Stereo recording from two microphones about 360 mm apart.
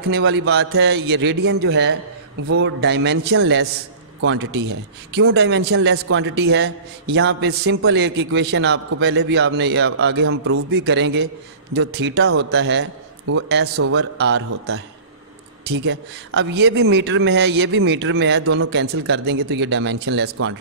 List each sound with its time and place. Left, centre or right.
0.1 s a man's voice: right
15.8 s a man's voice: right